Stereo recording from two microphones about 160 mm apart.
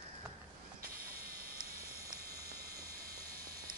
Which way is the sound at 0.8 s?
65° right (ahead or behind).